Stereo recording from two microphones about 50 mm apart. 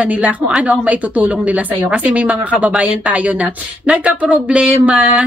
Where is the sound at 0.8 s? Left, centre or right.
Right.